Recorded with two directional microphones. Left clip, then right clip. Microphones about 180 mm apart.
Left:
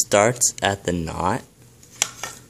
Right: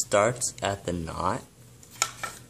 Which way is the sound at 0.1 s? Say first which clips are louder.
Left 5 dB; 35° left (ahead or behind).